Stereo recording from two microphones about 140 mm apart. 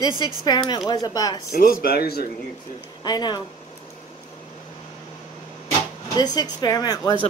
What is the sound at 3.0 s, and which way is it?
Speech, 30° left (ahead or behind).